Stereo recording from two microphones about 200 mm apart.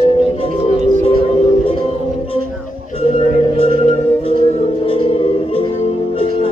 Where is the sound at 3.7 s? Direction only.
30° left (ahead or behind).